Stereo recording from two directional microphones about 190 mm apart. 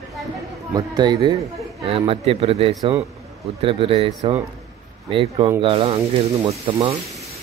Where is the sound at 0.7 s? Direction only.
20° right (ahead or behind).